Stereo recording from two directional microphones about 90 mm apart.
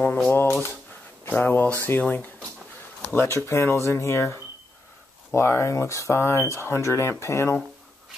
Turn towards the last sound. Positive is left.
turn(degrees=30)  # may be behind; listen again after turning